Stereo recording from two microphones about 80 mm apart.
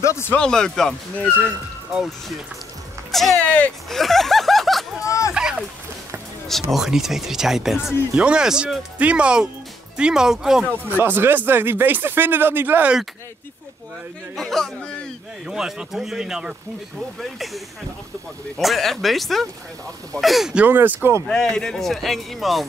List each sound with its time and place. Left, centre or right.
0.0 s speech: left
0.4 s speech: centre
3.1 s speech: centre
3.3 s speech: centre
3.9 s speech: centre
5.0 s a sound: left
5.3 s a sound: centre
6.6 s speech: centre
10.9 s speech: right
14.3 s speech: centre
15.4 s speech: centre
18.6 s speech: centre
20.5 s speech: right
21.3 s speech: centre